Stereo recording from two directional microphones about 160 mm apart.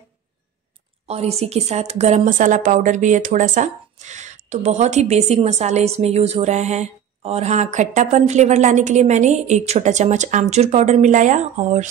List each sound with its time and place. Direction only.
1.0 s speech: 40° right (ahead or behind)